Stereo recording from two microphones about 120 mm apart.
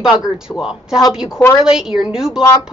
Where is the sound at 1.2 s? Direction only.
20° left (ahead or behind).